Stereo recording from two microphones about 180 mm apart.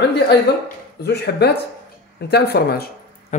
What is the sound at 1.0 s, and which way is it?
A man's voice, 70° left (ahead or behind).